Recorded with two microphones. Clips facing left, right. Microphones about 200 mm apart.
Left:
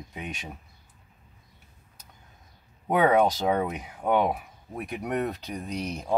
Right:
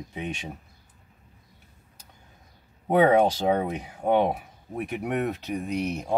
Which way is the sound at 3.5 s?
30° right (ahead or behind).